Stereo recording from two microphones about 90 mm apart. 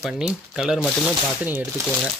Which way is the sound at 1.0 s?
15° right (ahead or behind).